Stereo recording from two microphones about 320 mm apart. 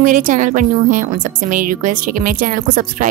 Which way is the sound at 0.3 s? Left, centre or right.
Right.